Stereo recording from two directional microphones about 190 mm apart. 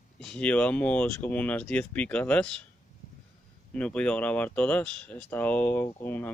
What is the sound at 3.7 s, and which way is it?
Speech, 5° left (ahead or behind).